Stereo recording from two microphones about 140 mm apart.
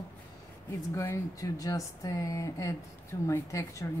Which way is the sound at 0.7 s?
20° left (ahead or behind).